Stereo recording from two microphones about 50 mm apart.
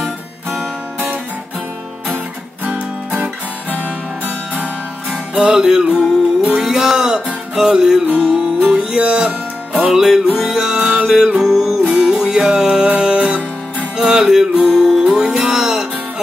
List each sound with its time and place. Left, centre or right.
2.6 s music: right
5.3 s music: centre
11.8 s music: centre